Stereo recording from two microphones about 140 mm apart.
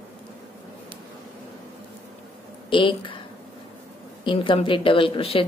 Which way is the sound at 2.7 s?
35° left (ahead or behind).